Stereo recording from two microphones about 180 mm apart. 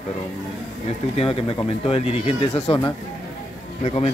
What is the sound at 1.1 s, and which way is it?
Speech, 30° left (ahead or behind).